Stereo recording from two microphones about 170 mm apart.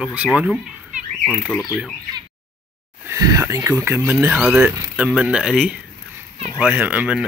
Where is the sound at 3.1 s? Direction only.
20° right (ahead or behind).